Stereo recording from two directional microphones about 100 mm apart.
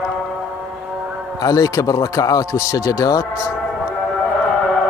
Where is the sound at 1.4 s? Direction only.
35° left (ahead or behind).